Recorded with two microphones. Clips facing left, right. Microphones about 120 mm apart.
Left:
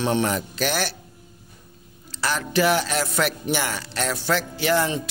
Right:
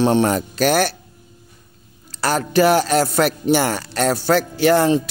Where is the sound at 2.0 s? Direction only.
40° right (ahead or behind).